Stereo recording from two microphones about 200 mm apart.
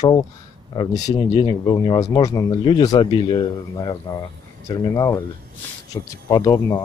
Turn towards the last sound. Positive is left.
turn(degrees=15)  # may be behind; listen again after turning